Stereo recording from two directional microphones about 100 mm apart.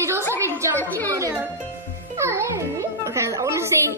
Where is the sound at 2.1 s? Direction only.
25° right (ahead or behind).